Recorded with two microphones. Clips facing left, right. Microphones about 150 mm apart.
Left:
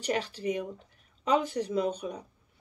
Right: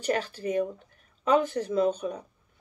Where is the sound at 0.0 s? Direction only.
45° right (ahead or behind).